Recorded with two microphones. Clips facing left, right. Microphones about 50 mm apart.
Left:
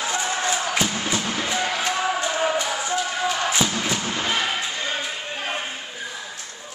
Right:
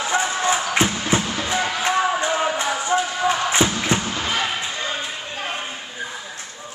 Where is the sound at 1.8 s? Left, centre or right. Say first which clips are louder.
Right 3 dB; right.